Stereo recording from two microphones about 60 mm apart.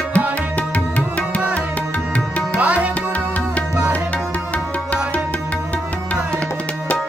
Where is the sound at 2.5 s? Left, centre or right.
Right.